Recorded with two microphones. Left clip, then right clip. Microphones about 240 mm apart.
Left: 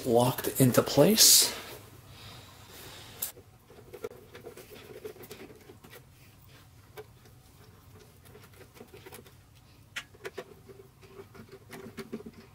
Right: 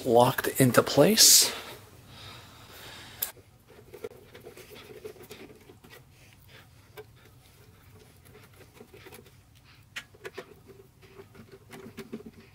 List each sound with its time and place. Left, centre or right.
0.0 s speech: centre
4.0 s patter: centre
9.9 s a sound: centre
11.3 s patter: centre